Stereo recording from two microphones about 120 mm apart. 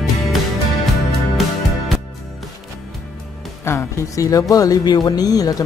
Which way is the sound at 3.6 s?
25° left (ahead or behind).